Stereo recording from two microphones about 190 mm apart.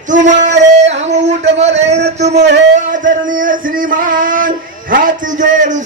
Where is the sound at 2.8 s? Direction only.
45° right (ahead or behind).